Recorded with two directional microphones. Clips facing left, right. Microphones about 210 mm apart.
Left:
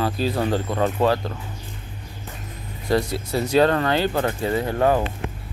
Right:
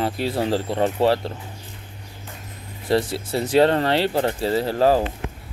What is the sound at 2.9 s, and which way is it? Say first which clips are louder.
Speech: right 1 dB; 25° right (ahead or behind).